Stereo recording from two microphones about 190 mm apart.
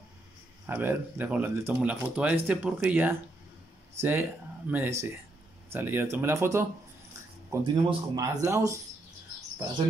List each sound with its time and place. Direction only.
0.7 s speech: 10° right (ahead or behind)
7.6 s speech: 20° right (ahead or behind)